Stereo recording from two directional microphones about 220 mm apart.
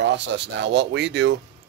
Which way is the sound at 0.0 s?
55° right (ahead or behind).